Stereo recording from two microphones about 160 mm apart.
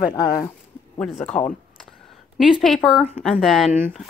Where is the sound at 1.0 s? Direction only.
5° left (ahead or behind).